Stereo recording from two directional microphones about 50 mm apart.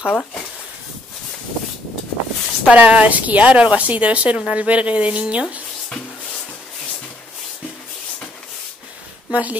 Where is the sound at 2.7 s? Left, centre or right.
Right.